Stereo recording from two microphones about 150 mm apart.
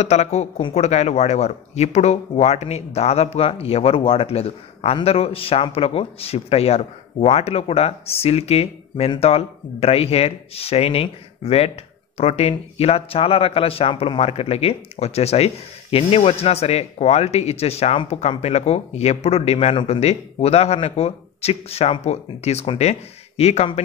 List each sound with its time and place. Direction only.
0.0 s a man's voice: 50° left (ahead or behind)